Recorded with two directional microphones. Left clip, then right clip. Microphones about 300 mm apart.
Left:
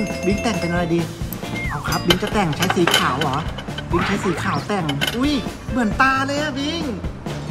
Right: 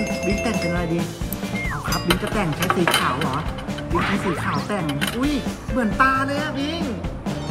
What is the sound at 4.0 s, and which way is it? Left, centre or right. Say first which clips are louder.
Speech: left 2 dB; centre.